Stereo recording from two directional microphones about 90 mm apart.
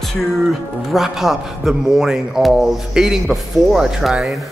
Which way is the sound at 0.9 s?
5° right (ahead or behind).